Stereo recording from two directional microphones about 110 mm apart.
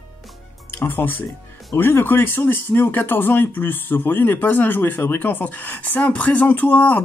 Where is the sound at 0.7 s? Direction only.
20° left (ahead or behind).